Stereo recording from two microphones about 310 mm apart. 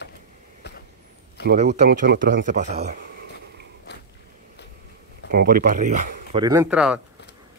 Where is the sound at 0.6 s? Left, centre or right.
Left.